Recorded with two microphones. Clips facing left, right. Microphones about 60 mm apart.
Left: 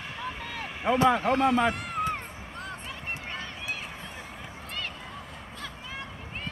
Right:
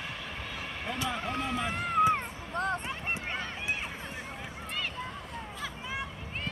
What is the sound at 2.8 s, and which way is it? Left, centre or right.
Run, right.